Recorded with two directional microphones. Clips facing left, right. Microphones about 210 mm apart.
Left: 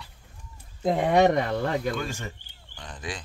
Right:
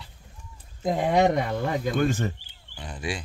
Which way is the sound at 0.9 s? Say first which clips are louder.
Left 1 dB; 10° right (ahead or behind).